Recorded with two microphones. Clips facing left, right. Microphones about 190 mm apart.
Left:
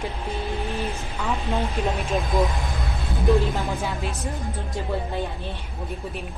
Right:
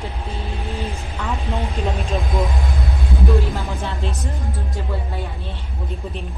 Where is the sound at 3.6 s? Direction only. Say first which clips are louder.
Even; 10° left (ahead or behind).